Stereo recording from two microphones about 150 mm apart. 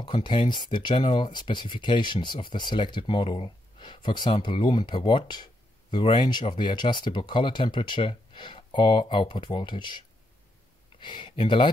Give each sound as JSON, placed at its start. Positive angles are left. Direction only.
{"t": 0.0, "sound": "speech", "side_deg": 35}